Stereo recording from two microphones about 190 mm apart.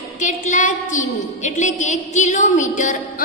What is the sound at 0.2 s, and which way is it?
A woman's voice, 40° left (ahead or behind).